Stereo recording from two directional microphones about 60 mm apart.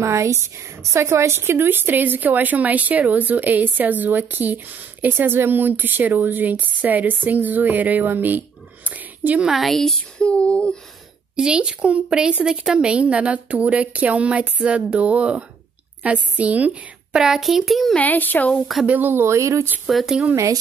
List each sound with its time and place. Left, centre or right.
0.0 s a woman's voice: right
9.4 s a woman's voice: centre
10.2 s speech: centre
11.3 s a woman's voice: centre
17.2 s a woman's voice: centre
17.9 s speech: left
18.9 s speech: right
19.9 s a woman's voice: centre